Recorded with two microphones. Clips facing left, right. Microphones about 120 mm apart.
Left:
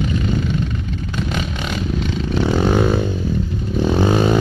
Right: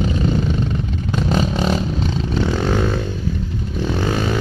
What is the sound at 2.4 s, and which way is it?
Vehicle, 10° left (ahead or behind).